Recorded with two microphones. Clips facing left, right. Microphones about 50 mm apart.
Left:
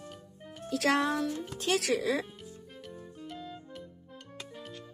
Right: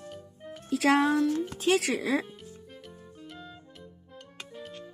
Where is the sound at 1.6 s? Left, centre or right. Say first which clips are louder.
Right 2 dB; centre.